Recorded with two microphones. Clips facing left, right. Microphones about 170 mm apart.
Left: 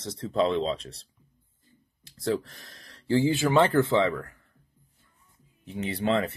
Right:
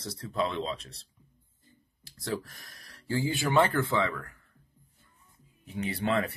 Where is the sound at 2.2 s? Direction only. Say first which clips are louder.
Left 6 dB; 30° left (ahead or behind).